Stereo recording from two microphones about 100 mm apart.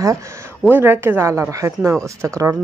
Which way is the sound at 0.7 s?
20° right (ahead or behind).